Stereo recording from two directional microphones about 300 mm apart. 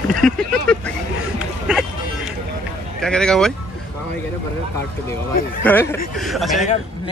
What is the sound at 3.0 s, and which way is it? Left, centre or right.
Speech, centre.